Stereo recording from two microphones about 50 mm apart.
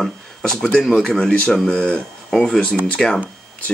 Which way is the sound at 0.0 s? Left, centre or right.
Centre.